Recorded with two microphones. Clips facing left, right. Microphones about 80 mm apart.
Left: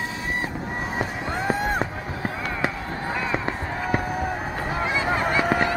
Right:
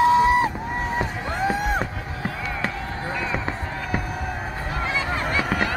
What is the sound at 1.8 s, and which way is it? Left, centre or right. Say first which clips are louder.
Honk: left 1 dB; centre.